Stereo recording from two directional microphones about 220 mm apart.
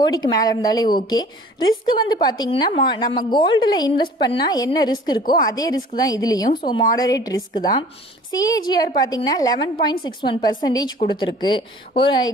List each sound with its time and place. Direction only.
0.0 s a woman's voice: 15° left (ahead or behind)